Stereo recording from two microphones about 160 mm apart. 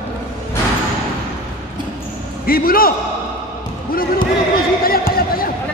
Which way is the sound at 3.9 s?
65° left (ahead or behind).